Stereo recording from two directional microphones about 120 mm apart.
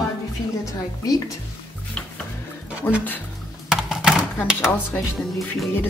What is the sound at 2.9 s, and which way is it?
Speech, 20° left (ahead or behind).